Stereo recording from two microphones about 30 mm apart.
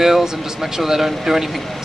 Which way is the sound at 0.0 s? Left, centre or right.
Centre.